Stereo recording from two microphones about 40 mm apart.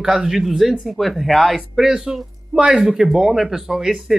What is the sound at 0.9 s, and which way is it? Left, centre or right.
Speech, centre.